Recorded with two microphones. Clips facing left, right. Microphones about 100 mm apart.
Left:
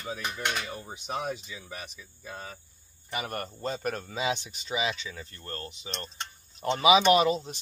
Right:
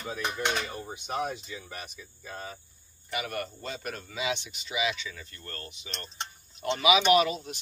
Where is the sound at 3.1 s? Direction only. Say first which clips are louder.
Right 1 dB; 40° left (ahead or behind).